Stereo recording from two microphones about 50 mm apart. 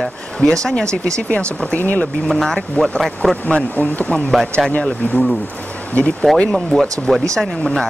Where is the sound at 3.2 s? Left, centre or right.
Centre.